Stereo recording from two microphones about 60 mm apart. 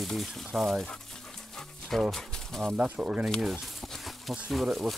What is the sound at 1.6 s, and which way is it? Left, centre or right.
Music, centre.